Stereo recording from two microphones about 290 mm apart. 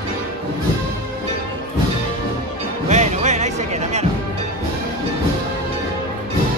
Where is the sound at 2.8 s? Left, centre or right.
Right.